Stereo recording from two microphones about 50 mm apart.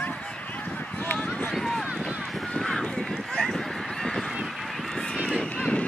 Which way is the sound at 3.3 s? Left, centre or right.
Centre.